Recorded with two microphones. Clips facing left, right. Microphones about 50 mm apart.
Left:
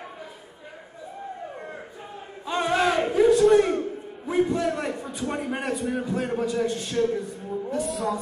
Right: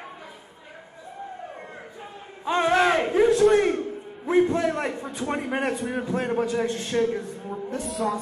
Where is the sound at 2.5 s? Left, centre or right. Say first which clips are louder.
Right 3 dB; right.